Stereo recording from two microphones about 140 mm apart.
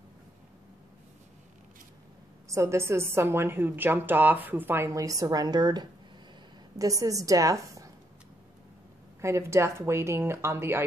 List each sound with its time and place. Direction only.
2.4 s a woman's voice: 20° right (ahead or behind)
9.2 s speech: 20° right (ahead or behind)